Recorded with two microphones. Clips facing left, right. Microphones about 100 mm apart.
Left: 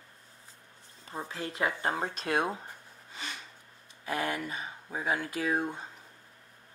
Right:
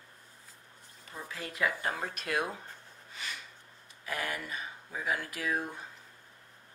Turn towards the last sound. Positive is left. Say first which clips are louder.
# left 4 dB
turn(degrees=25)  # may be behind; listen again after turning